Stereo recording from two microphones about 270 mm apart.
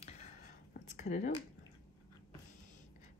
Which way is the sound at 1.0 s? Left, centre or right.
Left.